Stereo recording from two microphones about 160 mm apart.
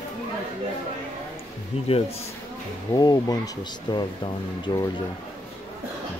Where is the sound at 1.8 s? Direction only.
40° left (ahead or behind).